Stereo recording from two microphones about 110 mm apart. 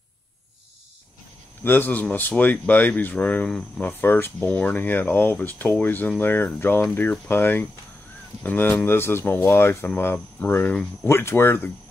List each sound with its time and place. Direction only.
1.6 s speech: 20° left (ahead or behind)
3.8 s speech: 20° left (ahead or behind)